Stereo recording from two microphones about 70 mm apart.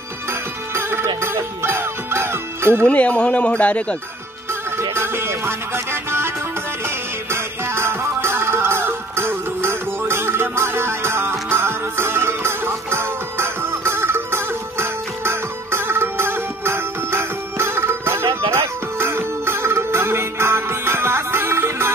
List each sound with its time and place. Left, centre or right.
0.3 s music: right
2.8 s a man's voice: centre
4.7 s music: right